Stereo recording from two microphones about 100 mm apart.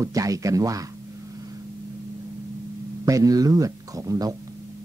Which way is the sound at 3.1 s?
35° right (ahead or behind).